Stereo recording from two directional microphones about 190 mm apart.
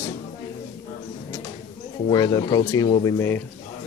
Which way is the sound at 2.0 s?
20° left (ahead or behind).